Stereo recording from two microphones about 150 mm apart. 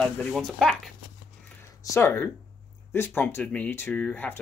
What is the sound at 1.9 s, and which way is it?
Speech, 15° left (ahead or behind).